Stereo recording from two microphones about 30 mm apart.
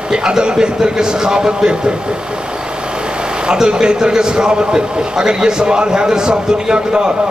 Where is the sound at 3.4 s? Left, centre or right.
Right.